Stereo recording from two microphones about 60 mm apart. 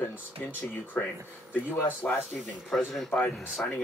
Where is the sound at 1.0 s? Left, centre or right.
Left.